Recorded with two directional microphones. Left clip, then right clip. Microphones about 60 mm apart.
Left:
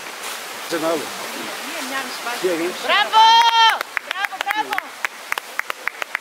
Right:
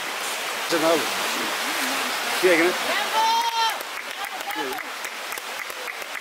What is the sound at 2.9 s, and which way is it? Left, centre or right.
Run, left.